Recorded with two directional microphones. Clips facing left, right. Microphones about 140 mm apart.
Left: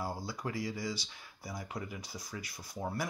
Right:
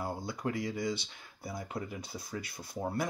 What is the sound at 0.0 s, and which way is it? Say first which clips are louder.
Speech: right 3 dB; 20° right (ahead or behind).